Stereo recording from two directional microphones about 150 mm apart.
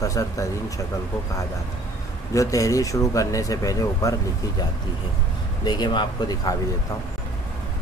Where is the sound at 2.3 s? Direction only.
20° left (ahead or behind).